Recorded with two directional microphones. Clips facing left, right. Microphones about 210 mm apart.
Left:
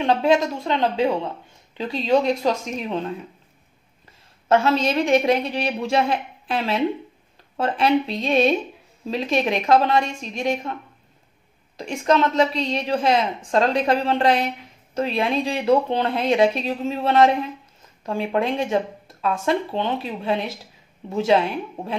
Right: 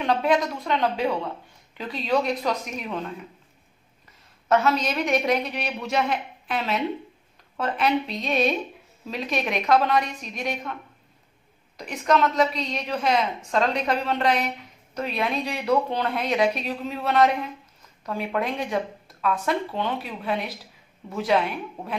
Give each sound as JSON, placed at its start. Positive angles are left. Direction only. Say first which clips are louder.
{"t": 0.0, "sound": "a woman's voice", "louder": "left 4 dB", "side_deg": 25}
{"t": 4.5, "sound": "a woman's voice", "louder": "left 3 dB", "side_deg": 30}